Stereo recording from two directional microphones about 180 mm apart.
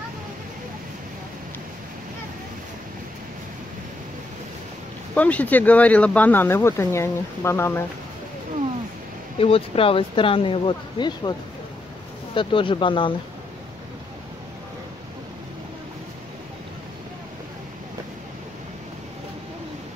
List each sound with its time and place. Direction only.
5.1 s speech: 10° left (ahead or behind)
9.4 s speech: 30° left (ahead or behind)
12.4 s speech: 30° left (ahead or behind)